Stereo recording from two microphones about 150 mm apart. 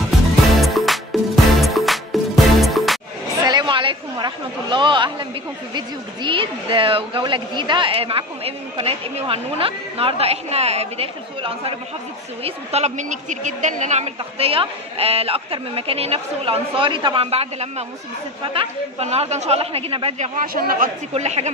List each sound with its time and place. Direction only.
0.6 s music: centre (ahead or behind)
3.4 s chatter: 30° right (ahead or behind)
5.8 s a woman's voice: 35° right (ahead or behind)
20.3 s a man's voice: 70° right (ahead or behind)
21.1 s speech: 45° right (ahead or behind)